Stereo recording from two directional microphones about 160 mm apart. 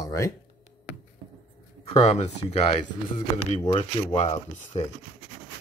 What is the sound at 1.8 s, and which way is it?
Speech, 40° left (ahead or behind).